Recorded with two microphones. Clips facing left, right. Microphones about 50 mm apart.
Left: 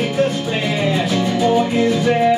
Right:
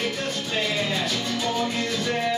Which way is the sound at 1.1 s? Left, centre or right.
Left.